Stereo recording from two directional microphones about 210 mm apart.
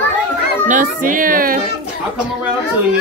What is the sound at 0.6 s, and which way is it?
Baby cry, 40° right (ahead or behind).